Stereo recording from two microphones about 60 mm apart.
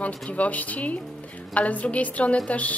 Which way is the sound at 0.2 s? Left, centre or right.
Left.